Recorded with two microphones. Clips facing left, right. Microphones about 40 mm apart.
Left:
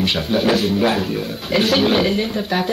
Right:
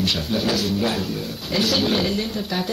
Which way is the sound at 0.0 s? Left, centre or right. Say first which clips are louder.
Left 5 dB; left.